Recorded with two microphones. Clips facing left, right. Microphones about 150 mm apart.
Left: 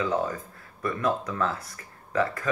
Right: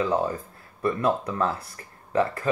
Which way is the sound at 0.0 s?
30° right (ahead or behind).